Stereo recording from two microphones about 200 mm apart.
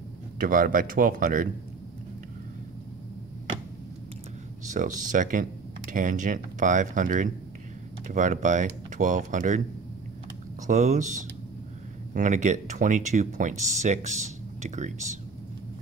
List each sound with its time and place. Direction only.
0.4 s speech: 45° right (ahead or behind)
4.7 s speech: 40° right (ahead or behind)
10.7 s speech: 35° right (ahead or behind)
12.1 s speech: 40° right (ahead or behind)